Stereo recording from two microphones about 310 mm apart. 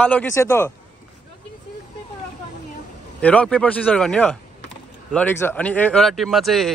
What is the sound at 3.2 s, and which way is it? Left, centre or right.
Speech, centre.